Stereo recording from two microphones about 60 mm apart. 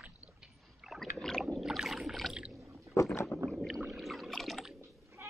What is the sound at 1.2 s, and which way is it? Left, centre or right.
Rowboat, centre.